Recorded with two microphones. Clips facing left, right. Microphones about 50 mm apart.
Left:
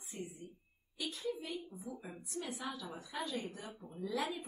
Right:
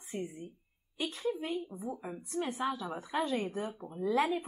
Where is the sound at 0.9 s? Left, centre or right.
Right.